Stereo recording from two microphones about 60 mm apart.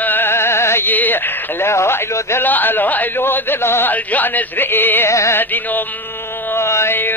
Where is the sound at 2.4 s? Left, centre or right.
Left.